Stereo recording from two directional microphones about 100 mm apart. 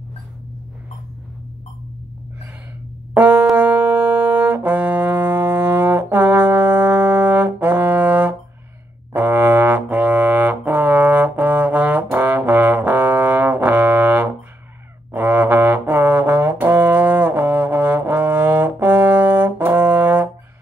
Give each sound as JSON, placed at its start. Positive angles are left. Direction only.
{"t": 3.2, "sound": "music", "side_deg": -15}
{"t": 3.5, "sound": "brass instrument", "side_deg": -15}